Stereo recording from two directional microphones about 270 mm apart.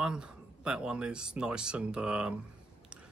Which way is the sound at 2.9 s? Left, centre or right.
Centre.